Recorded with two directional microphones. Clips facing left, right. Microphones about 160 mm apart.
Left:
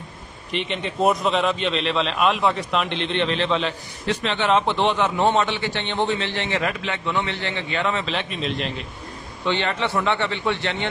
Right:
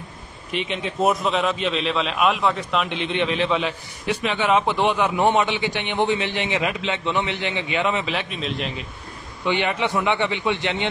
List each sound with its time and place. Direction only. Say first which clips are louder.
0.5 s a man's voice: even; centre (ahead or behind)
9.4 s a man's voice: right 1 dB; 15° right (ahead or behind)